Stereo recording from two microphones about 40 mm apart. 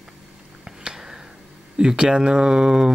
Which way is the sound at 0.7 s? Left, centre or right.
Centre.